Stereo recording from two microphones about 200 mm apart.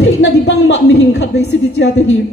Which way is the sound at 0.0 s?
65° left (ahead or behind).